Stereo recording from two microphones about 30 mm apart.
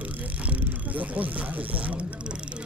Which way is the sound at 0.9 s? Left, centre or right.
Right.